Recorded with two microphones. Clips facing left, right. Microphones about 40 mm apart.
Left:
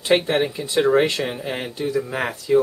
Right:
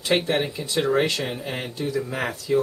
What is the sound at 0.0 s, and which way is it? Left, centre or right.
Speech, centre.